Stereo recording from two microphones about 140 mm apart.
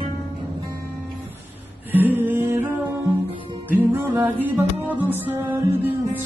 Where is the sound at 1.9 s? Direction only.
15° right (ahead or behind).